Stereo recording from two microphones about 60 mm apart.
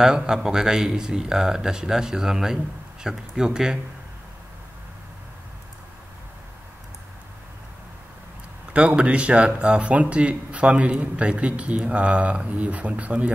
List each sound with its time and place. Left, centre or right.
0.0 s speech: centre
8.7 s speech: centre